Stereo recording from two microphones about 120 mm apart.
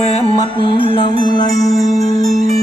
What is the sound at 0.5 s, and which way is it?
Music, 45° left (ahead or behind).